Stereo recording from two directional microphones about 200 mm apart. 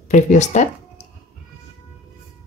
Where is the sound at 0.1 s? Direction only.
35° left (ahead or behind).